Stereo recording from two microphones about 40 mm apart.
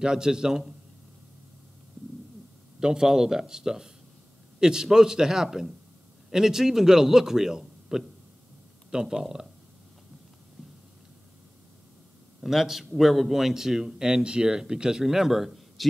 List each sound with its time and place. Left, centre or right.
0.0 s a man's voice: centre
2.8 s a man's voice: centre
9.0 s a man's voice: centre
12.4 s a man's voice: centre